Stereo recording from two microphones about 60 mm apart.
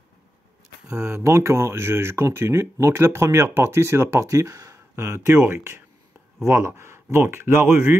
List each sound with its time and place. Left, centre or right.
0.9 s speech: right
4.2 s speech: right